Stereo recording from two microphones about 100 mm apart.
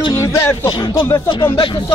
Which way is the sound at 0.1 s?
25° left (ahead or behind).